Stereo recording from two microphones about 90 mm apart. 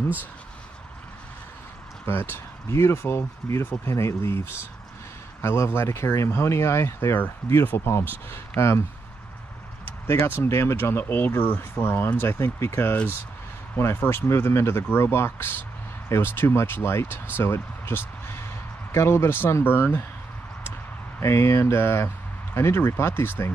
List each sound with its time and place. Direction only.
2.0 s speech: 25° left (ahead or behind)
5.4 s speech: 30° left (ahead or behind)
10.0 s speech: 25° left (ahead or behind)
21.2 s speech: 30° left (ahead or behind)